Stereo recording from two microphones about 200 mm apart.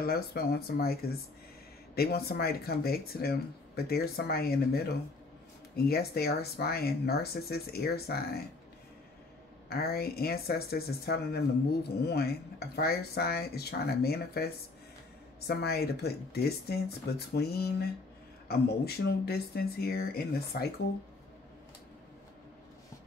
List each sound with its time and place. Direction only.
0.0 s speech: 50° left (ahead or behind)
9.7 s speech: 50° left (ahead or behind)